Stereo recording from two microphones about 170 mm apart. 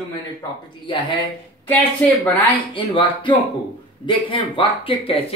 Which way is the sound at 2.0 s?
10° left (ahead or behind).